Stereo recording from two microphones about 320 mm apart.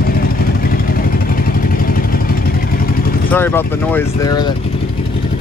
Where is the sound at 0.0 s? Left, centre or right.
Left.